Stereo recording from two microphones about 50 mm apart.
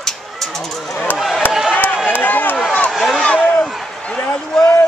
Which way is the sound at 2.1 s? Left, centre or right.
Left.